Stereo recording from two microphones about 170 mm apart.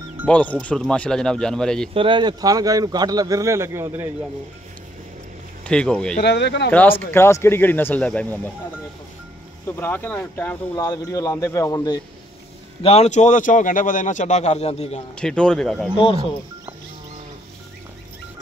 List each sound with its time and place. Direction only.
0.3 s speech: 10° left (ahead or behind)
2.0 s speech: 30° right (ahead or behind)
5.6 s speech: 5° left (ahead or behind)
6.2 s speech: 90° left
6.7 s speech: 10° left (ahead or behind)
9.7 s a man's voice: 10° left (ahead or behind)
12.8 s a man's voice: 40° left (ahead or behind)
15.1 s speech: 5° left (ahead or behind)